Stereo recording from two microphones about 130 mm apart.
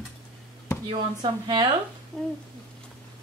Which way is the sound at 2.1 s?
Centre (ahead or behind).